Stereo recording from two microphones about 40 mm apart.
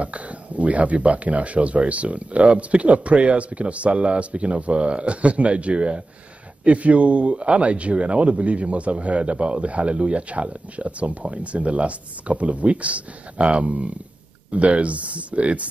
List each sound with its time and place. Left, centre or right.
0.0 s speech: right